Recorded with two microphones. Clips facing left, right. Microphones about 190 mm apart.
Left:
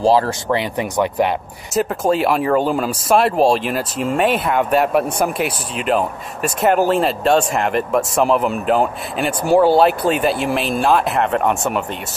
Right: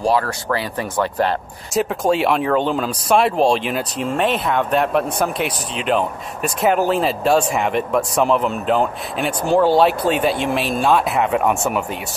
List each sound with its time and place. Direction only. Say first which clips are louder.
0.0 s speech: left 4 dB; 25° left (ahead or behind)
1.7 s speech: left 1 dB; centre (ahead or behind)